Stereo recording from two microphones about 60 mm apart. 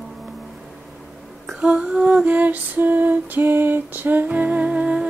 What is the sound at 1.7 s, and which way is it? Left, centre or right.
Lullaby, centre.